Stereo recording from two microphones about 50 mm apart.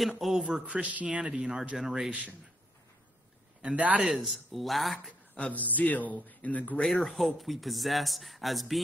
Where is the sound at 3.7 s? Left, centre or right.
Right.